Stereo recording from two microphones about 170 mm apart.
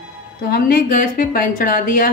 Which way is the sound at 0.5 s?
60° left (ahead or behind).